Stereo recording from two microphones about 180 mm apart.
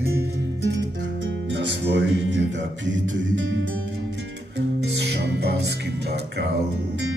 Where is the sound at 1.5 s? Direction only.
80° right.